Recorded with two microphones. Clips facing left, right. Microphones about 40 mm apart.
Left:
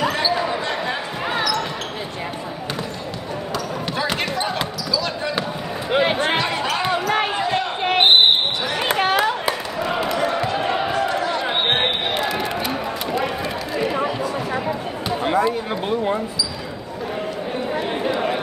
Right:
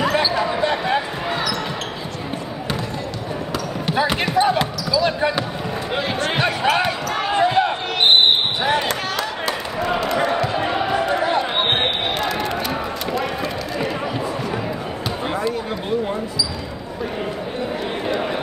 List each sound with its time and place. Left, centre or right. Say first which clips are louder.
0.0 s basketball bounce: right 2 dB; centre
0.6 s basketball bounce: right 5 dB; centre
3.8 s basketball bounce: right 5 dB; centre
5.9 s basketball bounce: left 6 dB; left
7.3 s basketball bounce: right 5 dB; right
7.8 s basketball bounce: left 3 dB; left
8.8 s a sound: left 5 dB; left
9.8 s basketball bounce: right 3 dB; centre
10.5 s a sound: right 1 dB; centre
11.0 s chatter: right 2 dB; right
11.5 s basketball bounce: even; centre
17.7 s a sound: left 2 dB; centre